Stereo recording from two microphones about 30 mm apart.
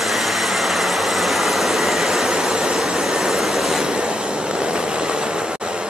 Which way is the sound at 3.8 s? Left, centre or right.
Right.